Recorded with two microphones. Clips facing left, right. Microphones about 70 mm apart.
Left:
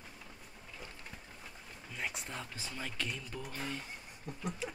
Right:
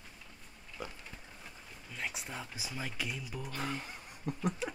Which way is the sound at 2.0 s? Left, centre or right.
Centre.